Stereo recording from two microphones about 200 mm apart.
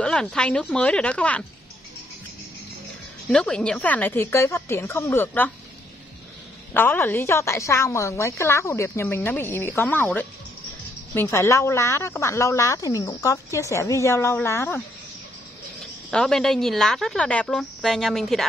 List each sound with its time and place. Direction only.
0.0 s a woman's voice: 5° left (ahead or behind)
3.3 s speech: 5° left (ahead or behind)
6.7 s speech: 10° left (ahead or behind)
16.1 s a woman's voice: 5° left (ahead or behind)